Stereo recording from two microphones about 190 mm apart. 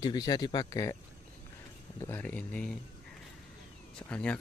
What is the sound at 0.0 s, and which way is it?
Speech, 20° left (ahead or behind).